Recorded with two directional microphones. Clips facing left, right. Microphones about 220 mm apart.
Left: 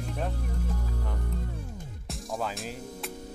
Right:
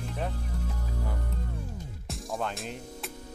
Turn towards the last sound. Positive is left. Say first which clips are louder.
# left 1 dB
turn(degrees=0)  # may be behind; listen again after turning